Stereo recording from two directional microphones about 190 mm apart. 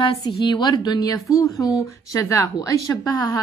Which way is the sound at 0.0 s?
25° left (ahead or behind).